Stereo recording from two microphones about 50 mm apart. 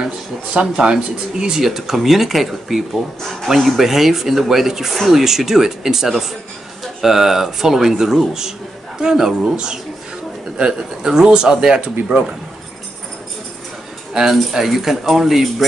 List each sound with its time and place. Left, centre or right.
0.0 s speech: centre
11.8 s speech: right
14.1 s speech: centre